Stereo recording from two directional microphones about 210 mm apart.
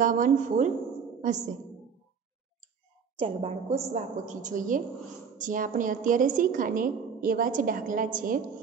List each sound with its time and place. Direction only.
0.0 s a woman's voice: 40° right (ahead or behind)
3.2 s a woman's voice: 25° right (ahead or behind)